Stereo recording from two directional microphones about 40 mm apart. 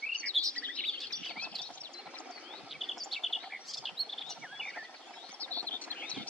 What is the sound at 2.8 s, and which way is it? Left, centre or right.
Chirp, centre.